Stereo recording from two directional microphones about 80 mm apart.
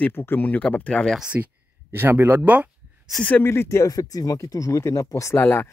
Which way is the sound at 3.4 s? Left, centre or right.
Left.